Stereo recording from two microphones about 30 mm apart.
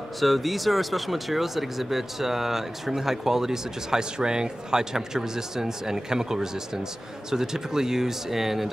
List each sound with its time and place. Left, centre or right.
0.2 s speech: centre